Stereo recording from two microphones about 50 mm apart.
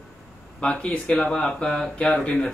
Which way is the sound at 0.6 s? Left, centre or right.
Centre.